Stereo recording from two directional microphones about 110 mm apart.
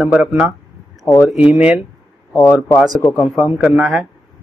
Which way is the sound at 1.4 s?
10° right (ahead or behind).